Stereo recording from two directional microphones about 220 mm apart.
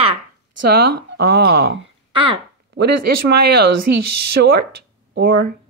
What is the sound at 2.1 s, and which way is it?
Speech, 25° right (ahead or behind).